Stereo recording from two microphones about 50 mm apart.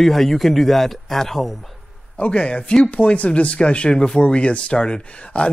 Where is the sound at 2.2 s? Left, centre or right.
Left.